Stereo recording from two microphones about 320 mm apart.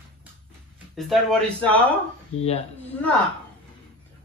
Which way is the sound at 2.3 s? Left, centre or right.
Left.